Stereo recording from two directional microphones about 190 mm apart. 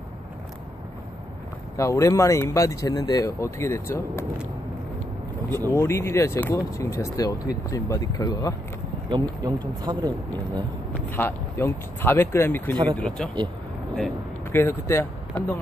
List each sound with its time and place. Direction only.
1.8 s speech: 15° left (ahead or behind)
5.5 s speech: 15° left (ahead or behind)
9.1 s speech: 20° right (ahead or behind)
10.9 s speech: 10° left (ahead or behind)
13.9 s a sound: 5° left (ahead or behind)
14.6 s speech: 15° left (ahead or behind)